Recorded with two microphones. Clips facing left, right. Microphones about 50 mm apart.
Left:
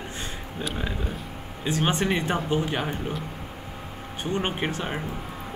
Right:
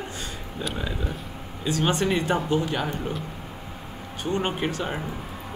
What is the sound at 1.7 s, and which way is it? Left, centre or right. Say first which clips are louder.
Speech: right 1 dB; left.